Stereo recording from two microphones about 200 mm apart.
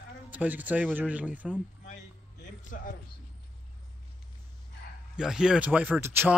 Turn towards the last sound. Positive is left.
turn(degrees=-10)  # may be behind; listen again after turning